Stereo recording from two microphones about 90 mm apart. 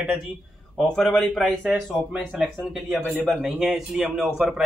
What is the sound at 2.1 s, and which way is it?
Speech, 10° right (ahead or behind).